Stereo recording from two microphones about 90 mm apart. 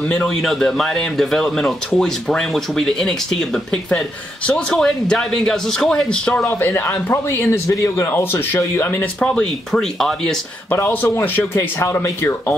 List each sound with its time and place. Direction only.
0.1 s speech: 5° left (ahead or behind)
6.7 s a man's voice: 25° left (ahead or behind); by 10.3 s 5° left (ahead or behind)
10.7 s a man's voice: 20° left (ahead or behind)